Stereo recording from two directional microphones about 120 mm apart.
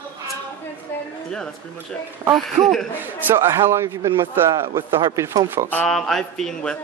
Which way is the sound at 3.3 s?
20° right (ahead or behind).